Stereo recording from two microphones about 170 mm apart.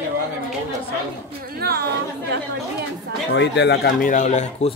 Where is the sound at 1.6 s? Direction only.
70° right (ahead or behind).